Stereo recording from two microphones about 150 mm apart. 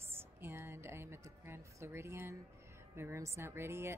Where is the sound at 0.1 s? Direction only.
15° right (ahead or behind).